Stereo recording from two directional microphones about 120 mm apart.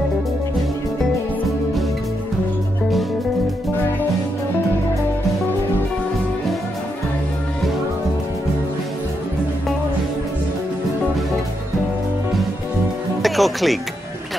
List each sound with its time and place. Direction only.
13.2 s speech: centre (ahead or behind)